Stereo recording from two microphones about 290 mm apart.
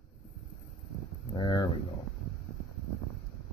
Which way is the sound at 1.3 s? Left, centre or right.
Centre.